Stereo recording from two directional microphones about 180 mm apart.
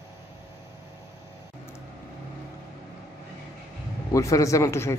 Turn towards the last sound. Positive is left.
turn(degrees=15)  # may be behind; listen again after turning